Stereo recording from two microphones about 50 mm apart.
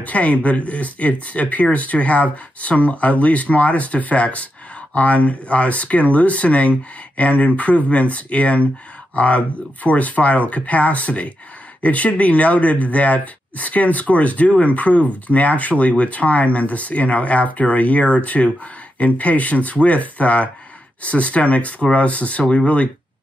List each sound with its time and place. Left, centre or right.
0.0 s speech: left